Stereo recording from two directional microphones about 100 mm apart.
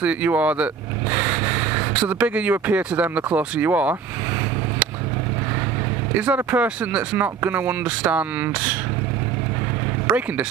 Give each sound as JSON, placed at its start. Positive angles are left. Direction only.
{"t": 0.0, "sound": "speech", "side_deg": -15}
{"t": 6.1, "sound": "speech", "side_deg": -15}
{"t": 10.0, "sound": "speech", "side_deg": -15}